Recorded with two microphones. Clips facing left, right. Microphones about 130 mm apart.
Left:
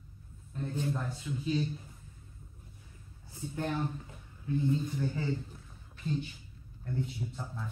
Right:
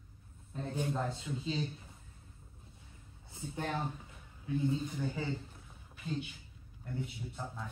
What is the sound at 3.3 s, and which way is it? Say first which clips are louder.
Speech: left 3 dB; 25° right (ahead or behind).